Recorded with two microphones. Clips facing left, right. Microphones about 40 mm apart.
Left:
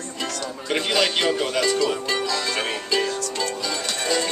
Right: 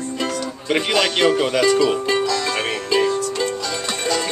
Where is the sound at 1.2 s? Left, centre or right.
Right.